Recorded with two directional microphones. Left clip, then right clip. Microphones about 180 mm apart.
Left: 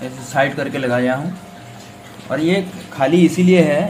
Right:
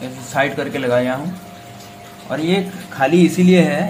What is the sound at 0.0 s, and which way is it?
A man's voice, 15° left (ahead or behind).